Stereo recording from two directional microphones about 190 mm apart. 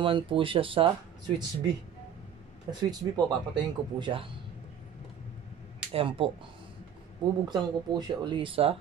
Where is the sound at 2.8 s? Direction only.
20° right (ahead or behind).